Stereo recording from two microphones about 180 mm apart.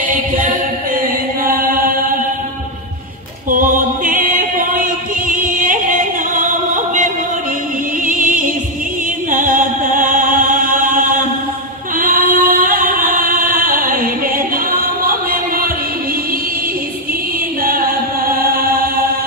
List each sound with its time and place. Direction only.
1.4 s chant: 55° right (ahead or behind)
3.4 s music: 50° right (ahead or behind)
17.6 s music: 55° right (ahead or behind)
18.7 s chant: 55° right (ahead or behind)